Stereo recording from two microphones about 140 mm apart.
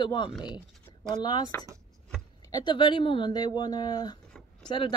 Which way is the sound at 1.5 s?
15° left (ahead or behind).